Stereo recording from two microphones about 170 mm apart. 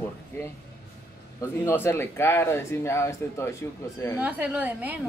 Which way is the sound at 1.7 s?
15° left (ahead or behind).